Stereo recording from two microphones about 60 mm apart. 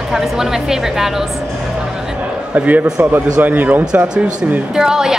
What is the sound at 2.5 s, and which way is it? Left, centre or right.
Speech, right.